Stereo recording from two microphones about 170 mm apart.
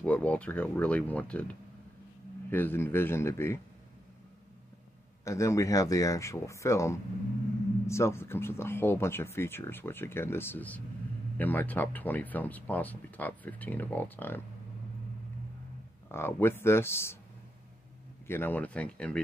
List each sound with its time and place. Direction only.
0.0 s speech: 5° left (ahead or behind)
5.2 s speech: 15° left (ahead or behind)
16.1 s speech: 15° left (ahead or behind)
18.2 s speech: 15° left (ahead or behind)